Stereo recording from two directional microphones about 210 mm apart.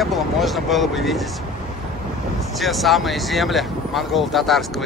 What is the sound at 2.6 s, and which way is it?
Speech, centre (ahead or behind).